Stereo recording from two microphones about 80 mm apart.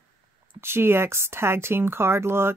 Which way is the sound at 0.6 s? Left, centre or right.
Right.